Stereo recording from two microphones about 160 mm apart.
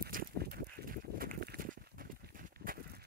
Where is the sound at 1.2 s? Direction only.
70° right (ahead or behind).